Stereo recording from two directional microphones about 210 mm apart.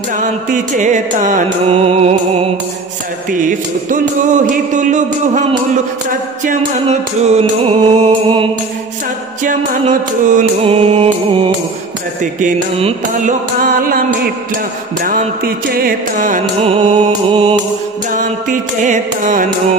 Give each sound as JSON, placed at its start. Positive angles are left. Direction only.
{"t": 0.2, "sound": "music", "side_deg": -35}
{"t": 3.3, "sound": "music", "side_deg": -40}
{"t": 6.4, "sound": "music", "side_deg": -30}
{"t": 9.4, "sound": "music", "side_deg": -40}
{"t": 12.2, "sound": "music", "side_deg": -35}
{"t": 18.1, "sound": "music", "side_deg": -40}